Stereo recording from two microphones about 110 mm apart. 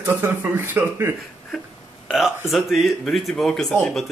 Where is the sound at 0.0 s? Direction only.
20° right (ahead or behind).